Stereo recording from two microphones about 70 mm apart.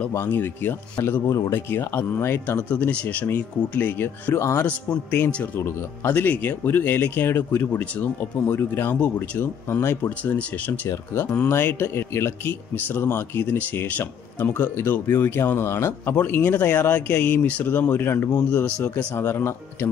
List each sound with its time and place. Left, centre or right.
0.1 s speech: left
1.2 s speech: left
1.7 s speech: left
2.4 s speech: left
9.0 s speech: centre
9.4 s speech: left
10.0 s speech: left
11.3 s speech: left
12.7 s speech: left
13.6 s speech: left
14.6 s speech: left